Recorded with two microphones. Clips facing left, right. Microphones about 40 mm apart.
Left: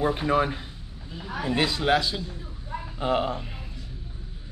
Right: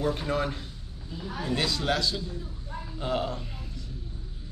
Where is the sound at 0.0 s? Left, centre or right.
Left.